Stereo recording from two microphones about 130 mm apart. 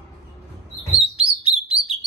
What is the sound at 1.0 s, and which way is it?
Chirp, 50° right (ahead or behind).